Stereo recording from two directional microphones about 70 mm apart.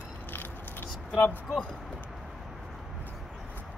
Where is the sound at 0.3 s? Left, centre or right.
Left.